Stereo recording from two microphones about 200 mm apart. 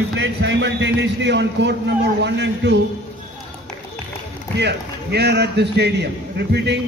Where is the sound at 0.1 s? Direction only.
65° right (ahead or behind).